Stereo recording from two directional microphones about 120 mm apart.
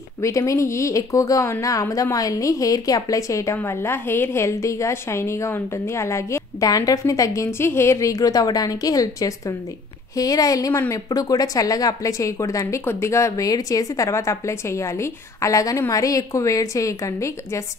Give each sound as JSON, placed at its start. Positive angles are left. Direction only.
{"t": 0.2, "sound": "speech", "side_deg": 25}